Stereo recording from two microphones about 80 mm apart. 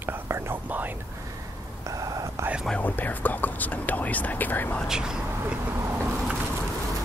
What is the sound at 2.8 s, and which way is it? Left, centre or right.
Speech, left.